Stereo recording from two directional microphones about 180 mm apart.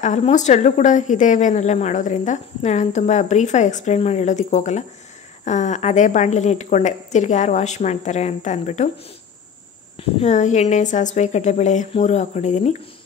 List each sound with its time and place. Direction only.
0.0 s a woman's voice: 40° left (ahead or behind)
9.9 s a woman's voice: 40° left (ahead or behind)